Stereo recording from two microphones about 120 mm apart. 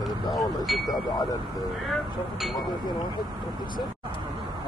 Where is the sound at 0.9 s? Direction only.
35° left (ahead or behind).